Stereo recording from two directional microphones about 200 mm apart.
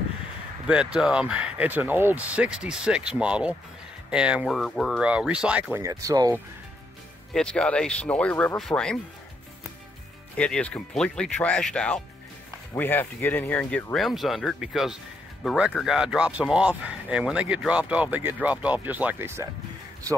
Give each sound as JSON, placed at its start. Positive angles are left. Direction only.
{"t": 0.7, "sound": "speech", "side_deg": -5}
{"t": 7.3, "sound": "speech", "side_deg": 5}
{"t": 10.3, "sound": "speech", "side_deg": 5}